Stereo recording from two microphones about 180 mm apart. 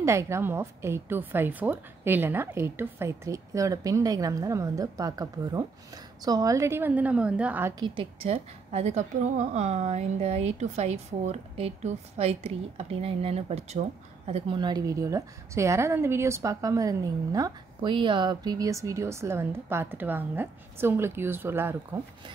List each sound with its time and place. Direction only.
0.0 s a woman's voice: 15° right (ahead or behind)
7.8 s a woman's voice: 30° right (ahead or behind); by 22.0 s 15° right (ahead or behind)